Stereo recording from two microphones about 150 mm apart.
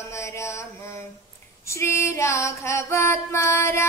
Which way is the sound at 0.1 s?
20° left (ahead or behind).